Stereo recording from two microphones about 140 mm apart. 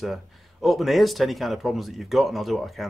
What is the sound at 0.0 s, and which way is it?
Speech, centre (ahead or behind).